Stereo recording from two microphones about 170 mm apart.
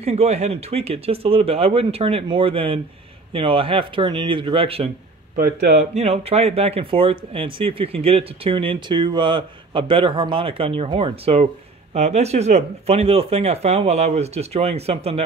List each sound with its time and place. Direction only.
0.0 s speech: 40° right (ahead or behind)